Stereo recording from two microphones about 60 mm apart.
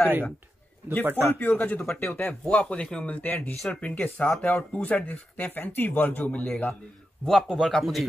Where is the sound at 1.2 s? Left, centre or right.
Left.